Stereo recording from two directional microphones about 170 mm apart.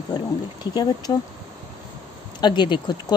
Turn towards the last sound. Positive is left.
turn(degrees=25)  # may be behind; listen again after turning